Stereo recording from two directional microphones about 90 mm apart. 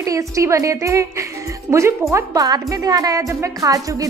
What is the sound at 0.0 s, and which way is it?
A woman's voice, 35° right (ahead or behind).